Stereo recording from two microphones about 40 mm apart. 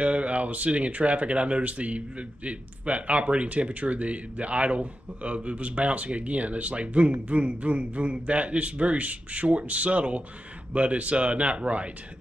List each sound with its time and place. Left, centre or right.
0.0 s speech: right